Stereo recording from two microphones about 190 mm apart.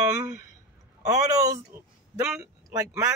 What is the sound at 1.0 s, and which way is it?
Speech, 20° right (ahead or behind).